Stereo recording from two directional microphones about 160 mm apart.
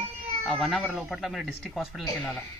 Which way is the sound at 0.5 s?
Centre (ahead or behind).